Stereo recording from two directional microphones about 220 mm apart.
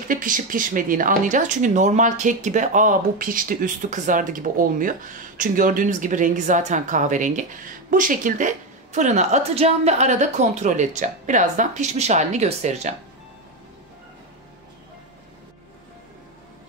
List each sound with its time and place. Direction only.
0.1 s speech: 40° right (ahead or behind)